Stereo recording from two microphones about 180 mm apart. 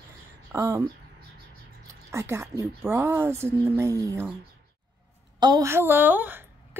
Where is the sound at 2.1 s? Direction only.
15° right (ahead or behind).